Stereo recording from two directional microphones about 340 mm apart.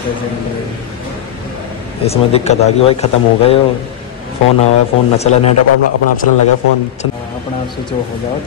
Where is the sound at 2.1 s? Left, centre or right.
Centre.